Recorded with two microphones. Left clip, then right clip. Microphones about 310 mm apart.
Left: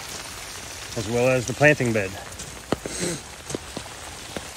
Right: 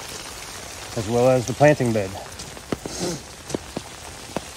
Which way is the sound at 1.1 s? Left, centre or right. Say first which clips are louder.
Right 3 dB; centre.